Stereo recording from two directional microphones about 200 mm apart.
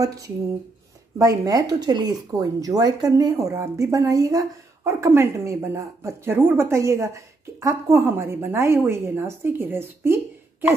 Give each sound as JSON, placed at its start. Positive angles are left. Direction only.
{"t": 0.0, "sound": "speech", "side_deg": -15}